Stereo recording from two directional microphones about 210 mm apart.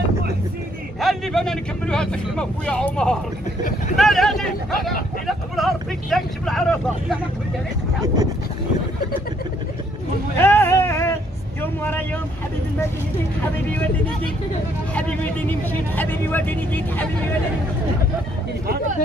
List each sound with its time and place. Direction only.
1.0 s speech: centre (ahead or behind)
10.3 s a sound: 10° left (ahead or behind)
11.6 s speech: 10° left (ahead or behind)
15.0 s speech: 5° left (ahead or behind)